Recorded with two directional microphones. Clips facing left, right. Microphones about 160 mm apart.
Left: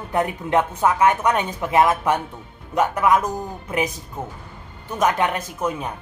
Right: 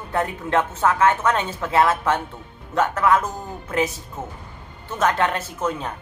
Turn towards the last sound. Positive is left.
turn(degrees=10)  # may be behind; listen again after turning